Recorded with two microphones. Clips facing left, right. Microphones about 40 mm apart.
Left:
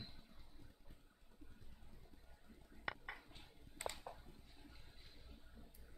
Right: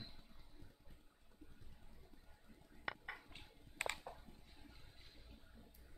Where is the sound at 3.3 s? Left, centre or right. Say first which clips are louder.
Right 9 dB; right.